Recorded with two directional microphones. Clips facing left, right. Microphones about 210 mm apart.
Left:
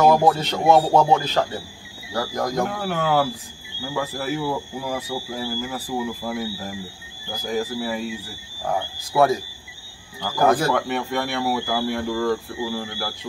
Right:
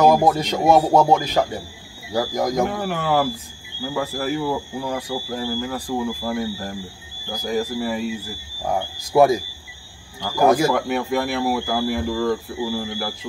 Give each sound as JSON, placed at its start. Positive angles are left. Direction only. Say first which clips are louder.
{"t": 0.1, "sound": "speech", "louder": "right 1 dB", "side_deg": -15}
{"t": 2.6, "sound": "speech", "louder": "right 1 dB", "side_deg": 0}
{"t": 9.1, "sound": "speech", "louder": "right 3 dB", "side_deg": -15}
{"t": 10.4, "sound": "speech", "louder": "right 2 dB", "side_deg": -10}
{"t": 10.9, "sound": "speech", "louder": "right 3 dB", "side_deg": 0}